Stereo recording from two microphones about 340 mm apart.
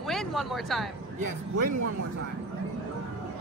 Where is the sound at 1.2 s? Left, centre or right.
Right.